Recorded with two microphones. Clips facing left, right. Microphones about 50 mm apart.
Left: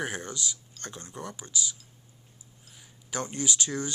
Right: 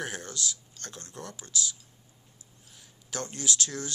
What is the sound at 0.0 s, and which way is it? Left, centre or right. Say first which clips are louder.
Speech: left 2 dB; centre.